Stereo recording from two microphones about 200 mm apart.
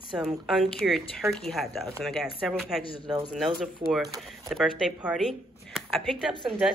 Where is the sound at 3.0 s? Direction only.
20° right (ahead or behind).